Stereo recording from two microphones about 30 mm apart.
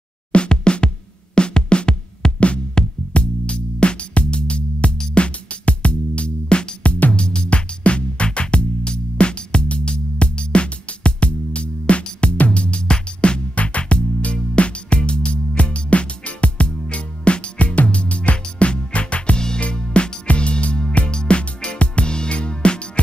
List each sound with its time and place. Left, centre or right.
0.3 s music: left
3.1 s music: left
19.3 s music: left